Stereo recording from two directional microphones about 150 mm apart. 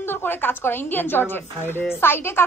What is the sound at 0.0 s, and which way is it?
A woman's voice, 15° left (ahead or behind).